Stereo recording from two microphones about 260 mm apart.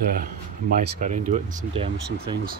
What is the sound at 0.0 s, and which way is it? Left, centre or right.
Speech, right.